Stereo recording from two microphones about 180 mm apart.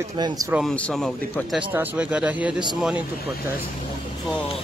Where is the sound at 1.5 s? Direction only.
10° right (ahead or behind).